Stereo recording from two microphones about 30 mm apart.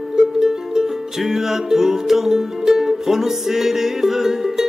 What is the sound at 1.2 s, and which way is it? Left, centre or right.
Music, centre.